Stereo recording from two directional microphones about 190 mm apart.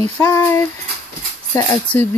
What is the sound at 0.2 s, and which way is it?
Speech, 15° left (ahead or behind).